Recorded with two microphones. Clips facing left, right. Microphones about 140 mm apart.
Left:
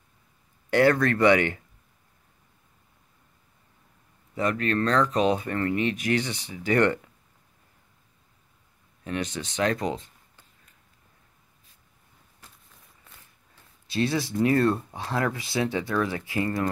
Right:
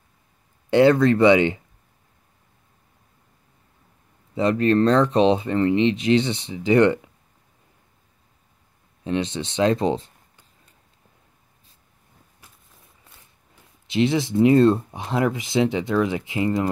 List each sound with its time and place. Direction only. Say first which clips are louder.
0.7 s speech: right 5 dB; 20° right (ahead or behind)
4.4 s speech: right 7 dB; 30° right (ahead or behind)
9.0 s speech: right 6 dB; 25° right (ahead or behind)
13.6 s speech: right 6 dB; 20° right (ahead or behind)